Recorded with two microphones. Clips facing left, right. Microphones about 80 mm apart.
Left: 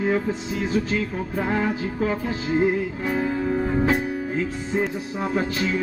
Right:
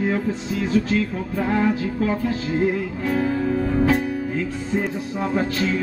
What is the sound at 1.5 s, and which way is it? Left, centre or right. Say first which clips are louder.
Music: right 5 dB; centre.